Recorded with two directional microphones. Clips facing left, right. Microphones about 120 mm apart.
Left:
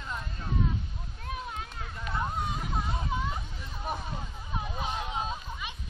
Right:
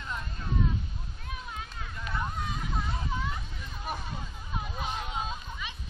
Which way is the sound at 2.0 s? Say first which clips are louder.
Left 2 dB; 20° left (ahead or behind).